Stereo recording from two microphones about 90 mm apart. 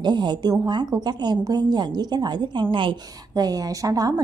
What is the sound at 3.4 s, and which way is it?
Speech, 45° right (ahead or behind).